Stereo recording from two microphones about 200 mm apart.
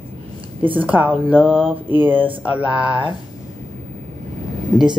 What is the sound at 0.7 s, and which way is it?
Speech, 10° right (ahead or behind).